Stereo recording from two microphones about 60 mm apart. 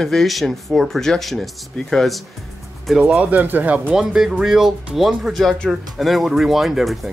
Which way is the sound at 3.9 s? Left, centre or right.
Centre.